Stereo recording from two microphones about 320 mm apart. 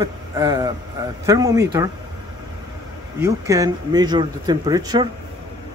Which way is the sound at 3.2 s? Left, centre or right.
Centre.